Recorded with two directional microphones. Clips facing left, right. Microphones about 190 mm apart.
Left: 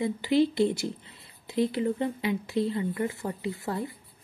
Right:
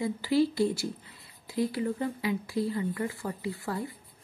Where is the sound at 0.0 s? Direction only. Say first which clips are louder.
Left 2 dB; 20° left (ahead or behind).